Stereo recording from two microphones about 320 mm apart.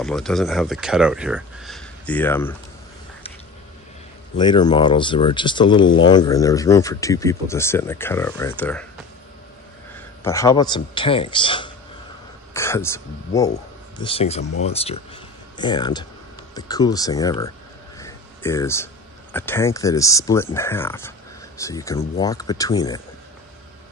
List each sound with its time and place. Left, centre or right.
0.0 s speech: centre
4.4 s speech: centre
10.2 s speech: centre
17.9 s a sound: centre
19.3 s speech: centre